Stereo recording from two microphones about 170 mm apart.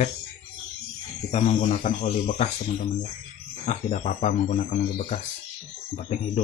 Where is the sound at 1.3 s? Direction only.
40° left (ahead or behind).